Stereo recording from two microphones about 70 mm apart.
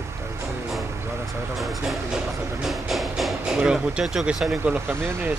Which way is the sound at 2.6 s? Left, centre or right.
Centre.